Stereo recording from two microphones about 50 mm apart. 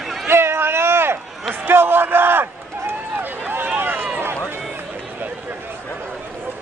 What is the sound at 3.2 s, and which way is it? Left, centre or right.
Run, right.